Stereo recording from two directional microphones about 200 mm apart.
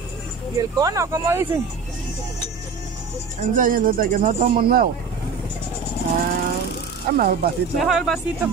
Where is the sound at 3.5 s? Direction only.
45° right (ahead or behind).